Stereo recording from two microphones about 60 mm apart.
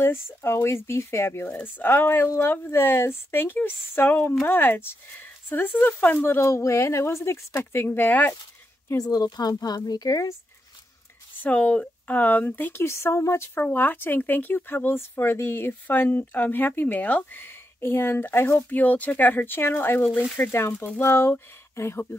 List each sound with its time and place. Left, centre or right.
0.0 s a woman's voice: left
1.5 s speech: left
6.2 s a woman's voice: left
8.9 s speech: left
11.4 s speech: left
12.8 s a woman's voice: left
13.6 s speech: left
18.7 s a woman's voice: left